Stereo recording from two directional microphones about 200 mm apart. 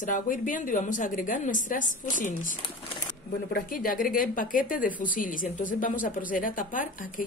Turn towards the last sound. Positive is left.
turn(degrees=45)  # may be behind; listen again after turning